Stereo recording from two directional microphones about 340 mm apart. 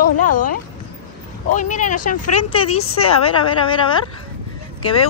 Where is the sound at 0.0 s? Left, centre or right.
Left.